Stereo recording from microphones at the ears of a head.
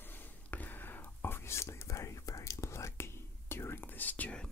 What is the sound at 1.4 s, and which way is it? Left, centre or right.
Whispering, left.